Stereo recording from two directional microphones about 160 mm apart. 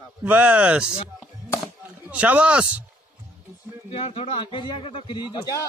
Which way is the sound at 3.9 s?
35° left (ahead or behind).